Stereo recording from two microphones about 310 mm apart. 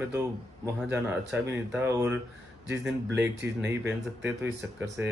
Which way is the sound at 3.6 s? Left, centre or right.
Right.